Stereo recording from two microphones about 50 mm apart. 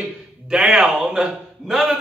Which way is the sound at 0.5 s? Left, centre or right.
Centre.